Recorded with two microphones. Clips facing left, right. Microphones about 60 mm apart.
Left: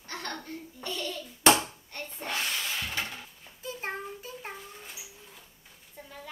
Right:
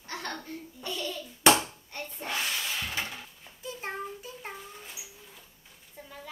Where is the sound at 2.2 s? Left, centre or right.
Centre.